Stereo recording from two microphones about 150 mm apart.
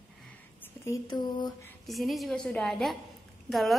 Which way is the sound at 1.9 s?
Centre (ahead or behind).